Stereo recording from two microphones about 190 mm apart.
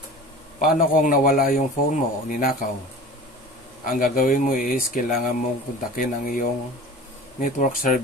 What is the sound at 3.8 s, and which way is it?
Speech, 45° left (ahead or behind).